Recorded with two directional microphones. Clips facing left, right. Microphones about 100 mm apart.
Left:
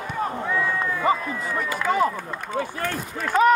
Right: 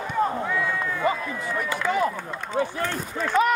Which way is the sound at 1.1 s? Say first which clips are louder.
Left 5 dB; 35° left (ahead or behind).